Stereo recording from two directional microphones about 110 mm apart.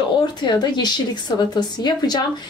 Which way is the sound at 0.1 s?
45° left (ahead or behind).